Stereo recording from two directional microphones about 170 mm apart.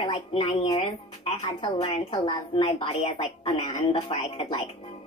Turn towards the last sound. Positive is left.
turn(degrees=35)  # may be behind; listen again after turning